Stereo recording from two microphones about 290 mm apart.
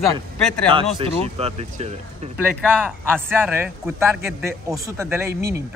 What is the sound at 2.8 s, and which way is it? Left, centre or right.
A man's voice, centre.